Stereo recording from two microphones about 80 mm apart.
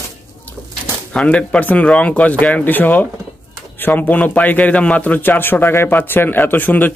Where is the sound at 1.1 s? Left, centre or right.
Centre.